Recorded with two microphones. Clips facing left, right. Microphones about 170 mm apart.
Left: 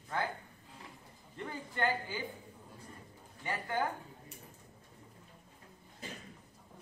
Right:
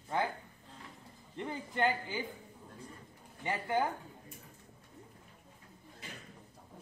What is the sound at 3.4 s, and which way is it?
Speech, 20° right (ahead or behind).